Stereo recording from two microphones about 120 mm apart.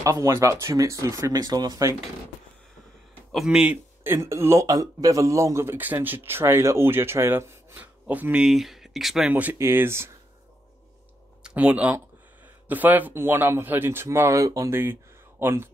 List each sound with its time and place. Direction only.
0.0 s speech: 25° right (ahead or behind)
3.3 s speech: 5° right (ahead or behind)
9.3 s speech: 15° right (ahead or behind)
11.4 s speech: 10° right (ahead or behind)